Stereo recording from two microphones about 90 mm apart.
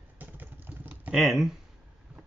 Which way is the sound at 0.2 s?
20° right (ahead or behind).